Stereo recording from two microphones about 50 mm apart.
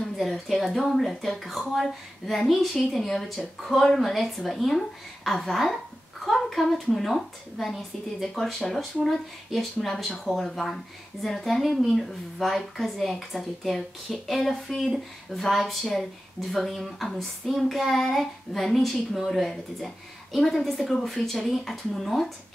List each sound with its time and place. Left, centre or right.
0.2 s a woman's voice: centre